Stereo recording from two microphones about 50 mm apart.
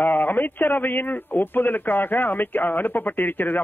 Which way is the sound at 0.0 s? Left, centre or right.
Left.